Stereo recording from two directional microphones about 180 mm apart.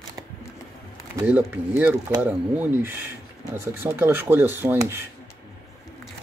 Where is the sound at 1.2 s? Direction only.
10° right (ahead or behind).